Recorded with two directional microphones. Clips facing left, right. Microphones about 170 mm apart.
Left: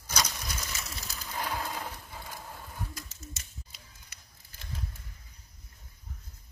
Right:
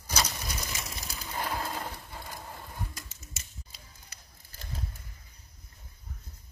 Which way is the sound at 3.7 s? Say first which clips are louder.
Right 2 dB; 35° right (ahead or behind).